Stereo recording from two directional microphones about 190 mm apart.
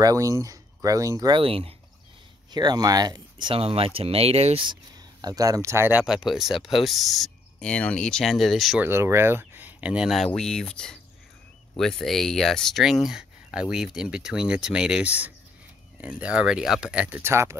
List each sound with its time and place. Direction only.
0.0 s speech: 15° right (ahead or behind); by 8.8 s centre (ahead or behind)
8.8 s speech: 15° right (ahead or behind)